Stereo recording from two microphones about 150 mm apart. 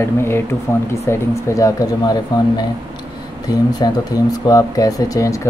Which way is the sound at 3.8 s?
25° left (ahead or behind).